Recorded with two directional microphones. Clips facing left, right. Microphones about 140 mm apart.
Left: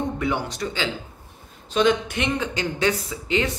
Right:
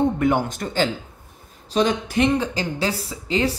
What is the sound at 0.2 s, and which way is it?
Speech, 50° right (ahead or behind).